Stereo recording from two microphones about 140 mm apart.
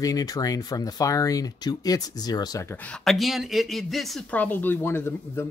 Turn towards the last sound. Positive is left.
turn(degrees=15)  # may be behind; listen again after turning